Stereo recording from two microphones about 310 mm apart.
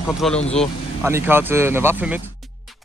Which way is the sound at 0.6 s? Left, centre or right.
Centre.